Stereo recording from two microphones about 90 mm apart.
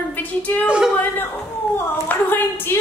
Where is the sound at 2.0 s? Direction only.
20° left (ahead or behind).